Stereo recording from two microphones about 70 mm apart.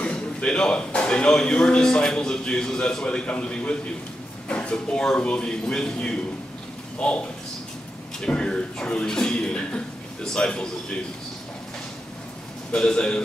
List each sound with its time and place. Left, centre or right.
0.0 s speech: centre
12.7 s speech: centre